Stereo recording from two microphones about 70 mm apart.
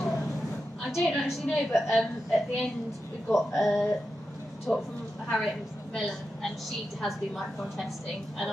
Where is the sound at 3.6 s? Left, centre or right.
Centre.